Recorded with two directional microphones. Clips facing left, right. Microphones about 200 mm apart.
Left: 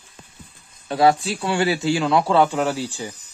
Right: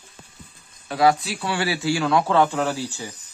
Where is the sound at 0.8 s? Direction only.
30° left (ahead or behind).